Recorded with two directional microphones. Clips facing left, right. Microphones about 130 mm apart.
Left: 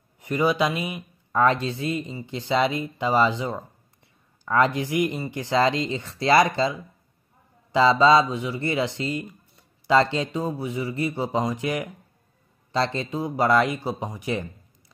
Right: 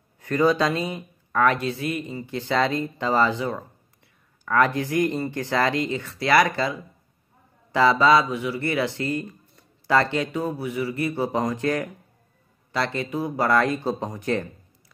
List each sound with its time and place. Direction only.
0.2 s a man's voice: 15° left (ahead or behind)
1.4 s a man's voice: 25° left (ahead or behind)
12.7 s a man's voice: 25° left (ahead or behind)